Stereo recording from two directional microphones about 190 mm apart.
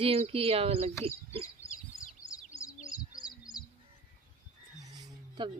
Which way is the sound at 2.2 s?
15° left (ahead or behind).